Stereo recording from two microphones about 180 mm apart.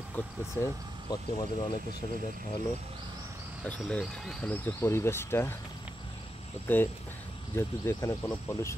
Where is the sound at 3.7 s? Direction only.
5° left (ahead or behind).